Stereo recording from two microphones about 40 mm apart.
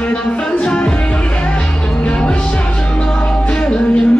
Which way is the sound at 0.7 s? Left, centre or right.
Left.